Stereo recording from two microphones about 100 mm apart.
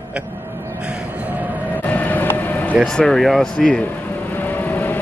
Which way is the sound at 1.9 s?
15° left (ahead or behind).